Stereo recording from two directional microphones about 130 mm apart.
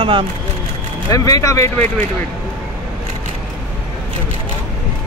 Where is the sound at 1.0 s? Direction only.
30° left (ahead or behind).